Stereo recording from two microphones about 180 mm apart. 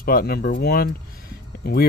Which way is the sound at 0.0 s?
55° left (ahead or behind).